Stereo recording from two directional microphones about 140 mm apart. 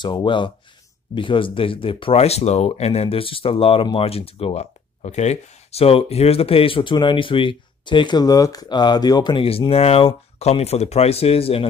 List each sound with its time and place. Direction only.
0.0 s speech: 35° left (ahead or behind)